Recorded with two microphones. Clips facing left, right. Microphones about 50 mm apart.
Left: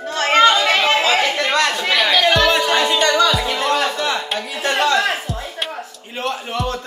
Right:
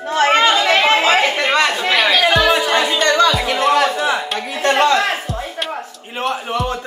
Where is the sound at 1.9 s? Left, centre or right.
Right.